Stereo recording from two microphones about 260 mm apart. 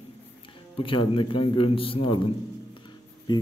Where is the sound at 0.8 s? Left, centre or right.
Centre.